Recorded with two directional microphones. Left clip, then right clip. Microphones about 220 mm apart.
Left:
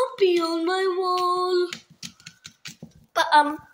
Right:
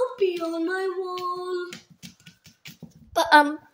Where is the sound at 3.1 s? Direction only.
40° right (ahead or behind).